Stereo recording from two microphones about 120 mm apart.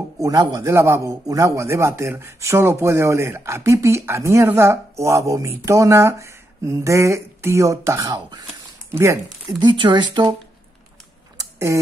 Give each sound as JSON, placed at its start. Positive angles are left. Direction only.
{"t": 0.2, "sound": "a man's voice", "side_deg": -30}
{"t": 9.6, "sound": "speech", "side_deg": -40}
{"t": 11.3, "sound": "a sound", "side_deg": -25}